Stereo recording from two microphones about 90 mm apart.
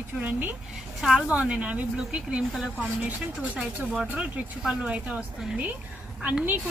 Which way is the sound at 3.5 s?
5° right (ahead or behind).